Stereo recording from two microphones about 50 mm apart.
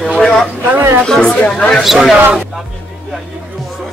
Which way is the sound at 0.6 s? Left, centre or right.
Right.